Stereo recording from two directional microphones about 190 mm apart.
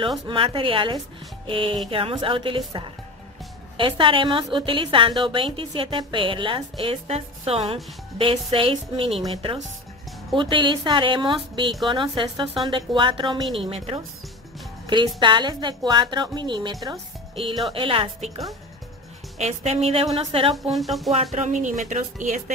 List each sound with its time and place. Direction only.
0.3 s a woman's voice: 25° right (ahead or behind)
10.3 s a woman's voice: 25° right (ahead or behind)
15.1 s a woman's voice: 25° right (ahead or behind)
19.3 s a woman's voice: 35° right (ahead or behind)
20.7 s speech: centre (ahead or behind)
21.1 s a woman's voice: 35° right (ahead or behind)